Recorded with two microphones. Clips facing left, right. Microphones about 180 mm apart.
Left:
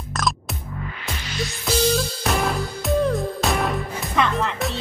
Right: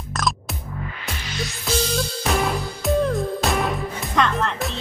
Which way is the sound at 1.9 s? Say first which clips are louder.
Left 2 dB; centre (ahead or behind).